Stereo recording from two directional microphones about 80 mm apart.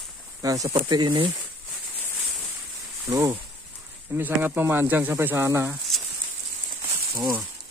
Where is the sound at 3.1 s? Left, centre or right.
Right.